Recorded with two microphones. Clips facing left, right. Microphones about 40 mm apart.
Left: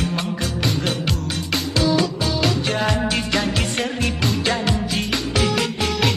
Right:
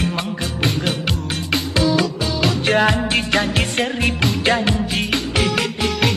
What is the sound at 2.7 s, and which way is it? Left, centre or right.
Music, right.